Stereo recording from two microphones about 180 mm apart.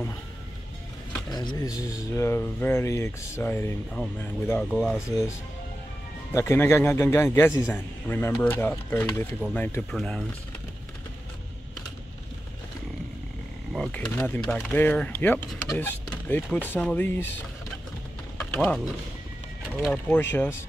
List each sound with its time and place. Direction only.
1.3 s speech: 25° left (ahead or behind); by 5.0 s centre (ahead or behind)
5.0 s speech: 15° left (ahead or behind)
6.3 s speech: 15° left (ahead or behind)
13.7 s speech: 5° left (ahead or behind)
18.4 s mechanisms: 5° left (ahead or behind)
19.8 s speech: 5° left (ahead or behind)